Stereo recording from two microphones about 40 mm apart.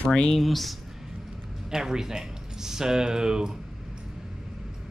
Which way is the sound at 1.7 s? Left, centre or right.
Centre.